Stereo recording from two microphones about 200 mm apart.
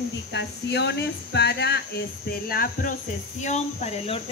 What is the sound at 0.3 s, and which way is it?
Speech, 60° left (ahead or behind).